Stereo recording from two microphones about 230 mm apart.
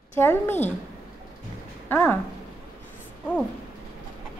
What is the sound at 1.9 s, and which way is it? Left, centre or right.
Speech, centre.